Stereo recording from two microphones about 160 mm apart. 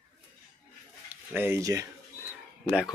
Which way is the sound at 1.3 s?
15° right (ahead or behind).